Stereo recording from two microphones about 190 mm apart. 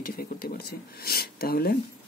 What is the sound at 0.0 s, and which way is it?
Speech, 50° left (ahead or behind).